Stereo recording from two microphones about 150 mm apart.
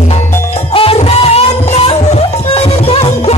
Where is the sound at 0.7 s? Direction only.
40° left (ahead or behind).